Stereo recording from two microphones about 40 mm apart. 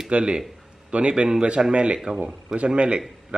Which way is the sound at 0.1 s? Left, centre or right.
Right.